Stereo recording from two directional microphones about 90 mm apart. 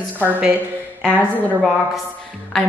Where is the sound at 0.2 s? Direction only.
15° right (ahead or behind).